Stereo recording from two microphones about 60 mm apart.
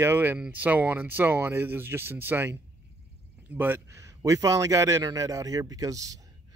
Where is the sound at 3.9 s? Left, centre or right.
Right.